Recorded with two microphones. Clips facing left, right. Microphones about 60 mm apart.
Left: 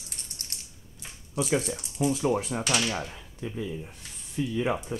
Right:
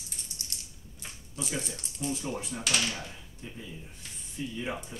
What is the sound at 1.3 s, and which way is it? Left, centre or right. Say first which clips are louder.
Speech: left 9 dB; left.